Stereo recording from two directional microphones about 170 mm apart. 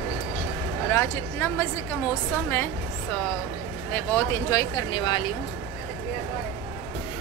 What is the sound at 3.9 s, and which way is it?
Speech, 10° left (ahead or behind).